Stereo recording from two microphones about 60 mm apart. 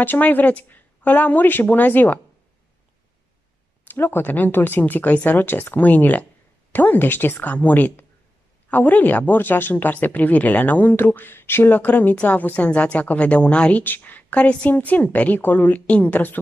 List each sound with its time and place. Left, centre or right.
0.0 s speech: left
3.8 s speech: left